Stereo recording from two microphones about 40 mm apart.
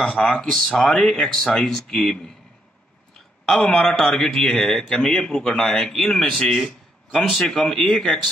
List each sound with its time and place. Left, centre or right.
0.0 s a man's voice: centre
1.6 s speech: centre
3.4 s a man's voice: centre
3.7 s a man's voice: centre
7.1 s a man's voice: centre
7.5 s a man's voice: centre